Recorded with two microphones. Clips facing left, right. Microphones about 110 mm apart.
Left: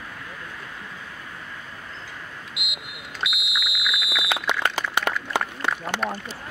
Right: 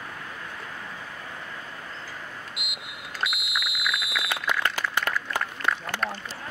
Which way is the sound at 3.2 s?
5° left (ahead or behind).